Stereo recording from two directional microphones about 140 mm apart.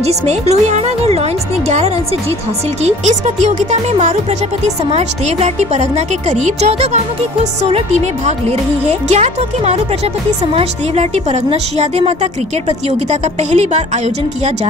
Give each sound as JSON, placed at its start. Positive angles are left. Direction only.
{"t": 0.0, "sound": "a woman's voice", "side_deg": -50}
{"t": 3.4, "sound": "a woman's voice", "side_deg": -55}